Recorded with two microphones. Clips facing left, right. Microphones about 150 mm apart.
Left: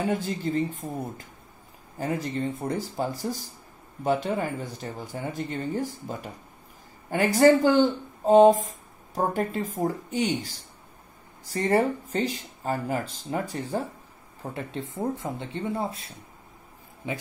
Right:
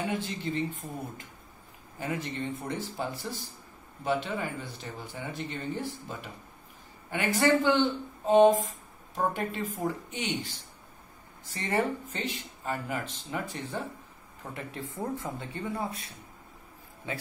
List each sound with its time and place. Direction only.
0.0 s speech: 40° left (ahead or behind); by 17.2 s 20° left (ahead or behind)